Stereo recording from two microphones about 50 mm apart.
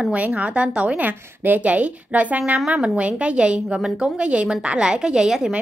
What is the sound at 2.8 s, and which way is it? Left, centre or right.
A woman's voice, right.